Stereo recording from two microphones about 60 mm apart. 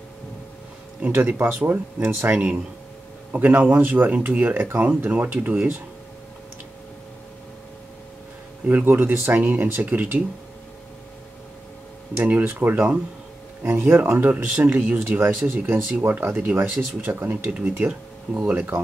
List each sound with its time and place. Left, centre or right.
1.0 s speech: right
3.3 s speech: right
8.6 s speech: right
9.9 s speech: right
12.2 s speech: right
17.5 s speech: centre